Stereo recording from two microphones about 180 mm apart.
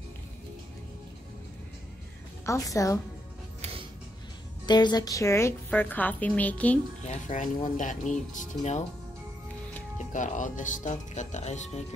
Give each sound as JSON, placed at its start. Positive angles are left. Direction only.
{"t": 2.4, "sound": "a woman's voice", "side_deg": 15}
{"t": 4.6, "sound": "a woman's voice", "side_deg": 25}
{"t": 7.1, "sound": "speech", "side_deg": 45}
{"t": 10.1, "sound": "speech", "side_deg": 45}